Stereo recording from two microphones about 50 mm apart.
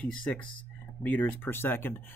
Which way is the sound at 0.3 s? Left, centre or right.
Left.